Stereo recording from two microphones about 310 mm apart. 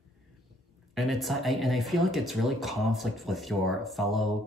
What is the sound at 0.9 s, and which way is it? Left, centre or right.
Speech, centre.